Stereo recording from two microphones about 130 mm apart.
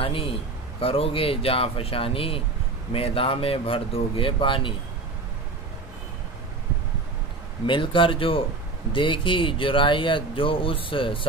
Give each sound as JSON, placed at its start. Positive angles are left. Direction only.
{"t": 0.0, "sound": "a man's voice", "side_deg": 45}
{"t": 7.6, "sound": "speech", "side_deg": 40}